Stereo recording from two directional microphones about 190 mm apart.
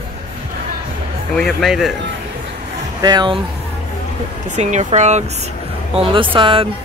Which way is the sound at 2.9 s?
20° right (ahead or behind).